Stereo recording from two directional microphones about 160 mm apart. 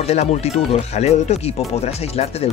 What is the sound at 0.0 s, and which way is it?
Speech, 40° left (ahead or behind).